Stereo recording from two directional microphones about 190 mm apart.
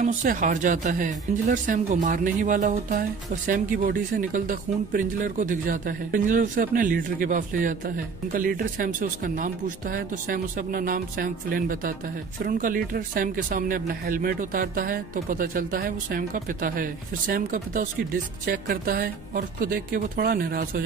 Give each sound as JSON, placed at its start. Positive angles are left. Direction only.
{"t": 0.0, "sound": "speech", "side_deg": -45}